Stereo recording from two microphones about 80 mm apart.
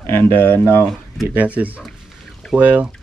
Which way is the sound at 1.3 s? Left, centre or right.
Centre.